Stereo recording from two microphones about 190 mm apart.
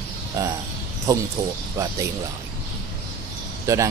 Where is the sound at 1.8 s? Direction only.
15° right (ahead or behind).